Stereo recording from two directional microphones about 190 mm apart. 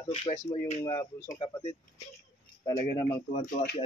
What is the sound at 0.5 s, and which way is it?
Speech, 35° left (ahead or behind).